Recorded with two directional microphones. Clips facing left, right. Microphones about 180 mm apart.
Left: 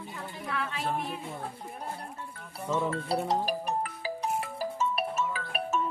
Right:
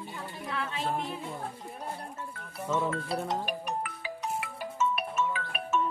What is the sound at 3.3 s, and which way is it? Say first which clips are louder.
Music: left 3 dB; 35° left (ahead or behind).